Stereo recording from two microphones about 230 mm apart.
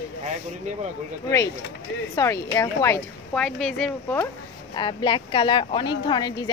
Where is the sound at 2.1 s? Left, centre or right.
Centre.